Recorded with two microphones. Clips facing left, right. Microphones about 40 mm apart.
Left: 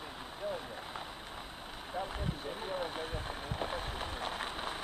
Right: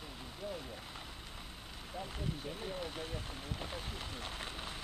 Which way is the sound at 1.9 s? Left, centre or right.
Left.